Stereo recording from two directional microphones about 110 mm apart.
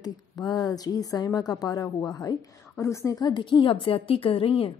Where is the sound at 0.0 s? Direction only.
35° left (ahead or behind).